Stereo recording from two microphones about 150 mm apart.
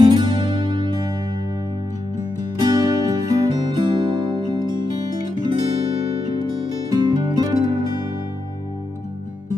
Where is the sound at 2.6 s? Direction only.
25° right (ahead or behind).